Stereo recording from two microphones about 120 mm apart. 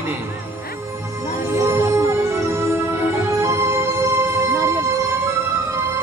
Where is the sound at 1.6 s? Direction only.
25° right (ahead or behind).